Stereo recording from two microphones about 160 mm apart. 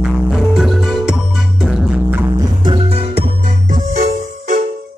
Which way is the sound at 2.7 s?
40° right (ahead or behind).